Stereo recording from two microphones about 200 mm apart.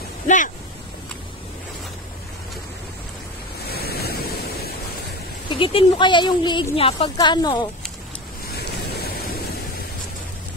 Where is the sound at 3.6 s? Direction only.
50° left (ahead or behind).